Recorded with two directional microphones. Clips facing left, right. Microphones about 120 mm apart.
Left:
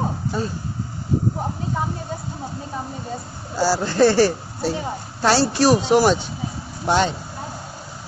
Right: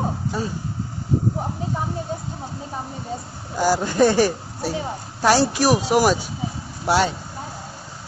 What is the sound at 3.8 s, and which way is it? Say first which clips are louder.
Speech: left 3 dB; 15° right (ahead or behind).